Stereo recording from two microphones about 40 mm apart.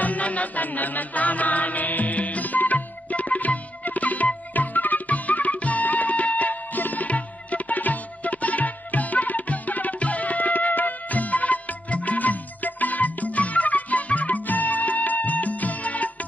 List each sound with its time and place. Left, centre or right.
0.0 s music: left